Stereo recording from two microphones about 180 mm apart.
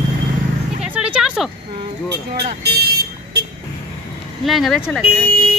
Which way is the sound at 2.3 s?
65° right (ahead or behind).